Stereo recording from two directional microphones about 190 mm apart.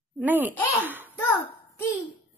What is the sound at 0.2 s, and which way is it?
Speech, 10° right (ahead or behind).